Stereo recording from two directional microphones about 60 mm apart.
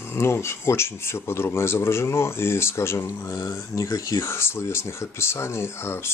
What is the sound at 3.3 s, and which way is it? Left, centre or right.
Speech, left.